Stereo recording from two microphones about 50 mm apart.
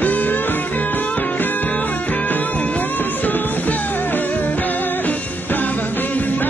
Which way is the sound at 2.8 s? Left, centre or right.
Left.